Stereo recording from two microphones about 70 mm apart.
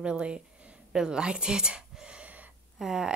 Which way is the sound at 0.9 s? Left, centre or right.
Centre.